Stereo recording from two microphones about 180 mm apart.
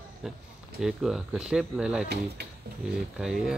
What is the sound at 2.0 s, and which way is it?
Speech, 65° right (ahead or behind).